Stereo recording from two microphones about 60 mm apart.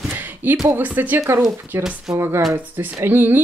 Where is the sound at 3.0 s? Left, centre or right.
Right.